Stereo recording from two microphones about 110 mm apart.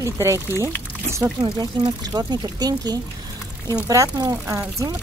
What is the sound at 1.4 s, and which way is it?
Speech, 40° right (ahead or behind).